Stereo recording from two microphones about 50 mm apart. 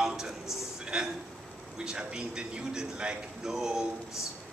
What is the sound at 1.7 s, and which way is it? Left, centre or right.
A man's voice, centre.